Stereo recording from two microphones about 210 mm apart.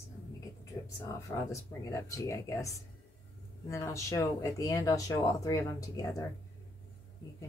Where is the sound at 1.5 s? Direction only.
15° left (ahead or behind).